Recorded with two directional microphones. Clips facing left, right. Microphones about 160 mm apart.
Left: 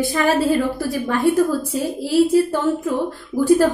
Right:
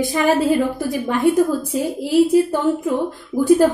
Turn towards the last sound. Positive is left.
turn(degrees=-15)  # may be behind; listen again after turning